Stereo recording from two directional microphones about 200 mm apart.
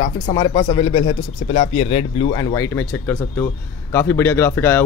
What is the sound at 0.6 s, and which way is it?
Speech, 25° left (ahead or behind).